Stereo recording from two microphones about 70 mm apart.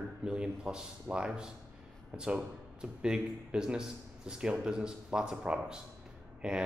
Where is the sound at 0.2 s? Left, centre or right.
Centre.